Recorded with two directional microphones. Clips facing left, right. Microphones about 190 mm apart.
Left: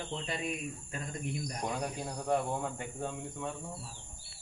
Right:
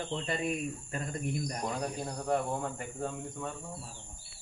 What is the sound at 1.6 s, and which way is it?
Speech, 5° left (ahead or behind).